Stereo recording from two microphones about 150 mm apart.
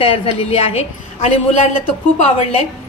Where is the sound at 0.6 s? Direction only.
45° left (ahead or behind).